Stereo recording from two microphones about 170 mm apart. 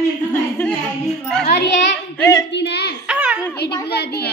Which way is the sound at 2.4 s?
90° left.